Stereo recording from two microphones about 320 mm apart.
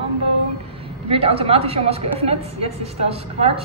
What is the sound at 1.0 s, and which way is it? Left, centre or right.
A woman's voice, centre.